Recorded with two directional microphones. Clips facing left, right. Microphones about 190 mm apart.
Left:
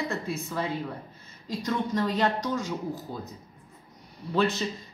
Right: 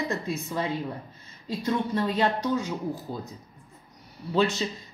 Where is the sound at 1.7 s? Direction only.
10° right (ahead or behind).